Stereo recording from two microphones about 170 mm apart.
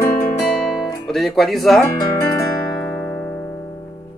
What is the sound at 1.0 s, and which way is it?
Speech, centre (ahead or behind).